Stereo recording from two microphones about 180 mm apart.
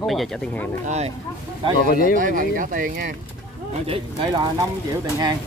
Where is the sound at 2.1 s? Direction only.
50° right (ahead or behind).